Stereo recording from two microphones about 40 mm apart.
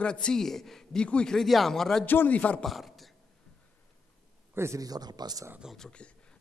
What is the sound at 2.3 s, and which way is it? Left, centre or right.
Speech, left.